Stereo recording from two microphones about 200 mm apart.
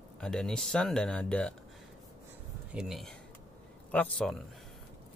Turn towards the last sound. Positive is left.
turn(degrees=5)  # may be behind; listen again after turning